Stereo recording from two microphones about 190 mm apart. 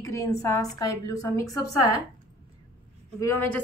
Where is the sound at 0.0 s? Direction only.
15° left (ahead or behind).